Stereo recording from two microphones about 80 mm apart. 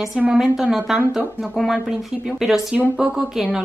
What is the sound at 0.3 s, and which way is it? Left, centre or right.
Speech, centre.